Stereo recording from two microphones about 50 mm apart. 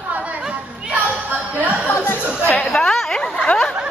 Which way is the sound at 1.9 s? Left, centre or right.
Left.